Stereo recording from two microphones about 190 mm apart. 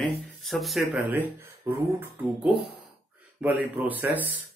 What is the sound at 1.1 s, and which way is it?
Speech, 10° right (ahead or behind).